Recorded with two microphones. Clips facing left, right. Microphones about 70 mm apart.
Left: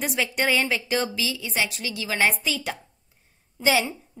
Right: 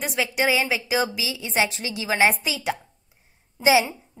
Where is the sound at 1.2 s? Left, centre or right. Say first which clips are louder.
Right 3 dB; right.